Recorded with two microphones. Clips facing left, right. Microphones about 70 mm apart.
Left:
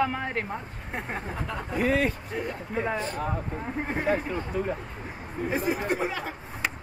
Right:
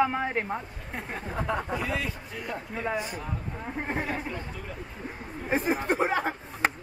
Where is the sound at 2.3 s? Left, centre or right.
Left.